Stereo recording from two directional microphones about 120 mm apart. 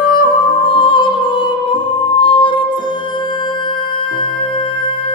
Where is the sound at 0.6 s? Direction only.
45° left (ahead or behind).